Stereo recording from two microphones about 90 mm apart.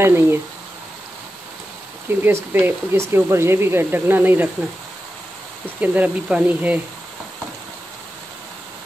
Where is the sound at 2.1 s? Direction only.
25° right (ahead or behind).